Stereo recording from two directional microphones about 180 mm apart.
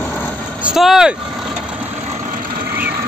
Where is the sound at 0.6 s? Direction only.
Centre (ahead or behind).